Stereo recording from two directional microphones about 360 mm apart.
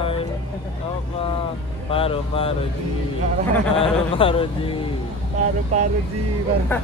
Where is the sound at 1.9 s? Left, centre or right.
Centre.